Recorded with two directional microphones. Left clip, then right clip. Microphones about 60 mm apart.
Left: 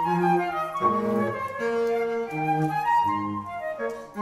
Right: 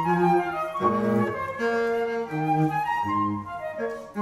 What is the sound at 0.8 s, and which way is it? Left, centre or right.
Music, right.